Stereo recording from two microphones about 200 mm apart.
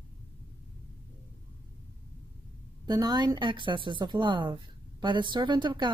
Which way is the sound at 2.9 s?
20° right (ahead or behind).